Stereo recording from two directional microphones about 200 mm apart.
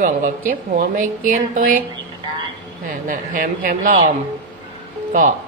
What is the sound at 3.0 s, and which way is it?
Speech, 45° right (ahead or behind).